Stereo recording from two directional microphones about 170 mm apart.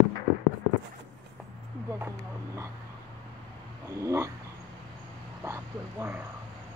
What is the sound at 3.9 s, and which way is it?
Speech, 15° right (ahead or behind).